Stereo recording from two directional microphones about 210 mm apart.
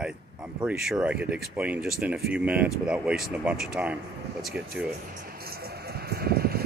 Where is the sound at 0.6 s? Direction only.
Centre (ahead or behind).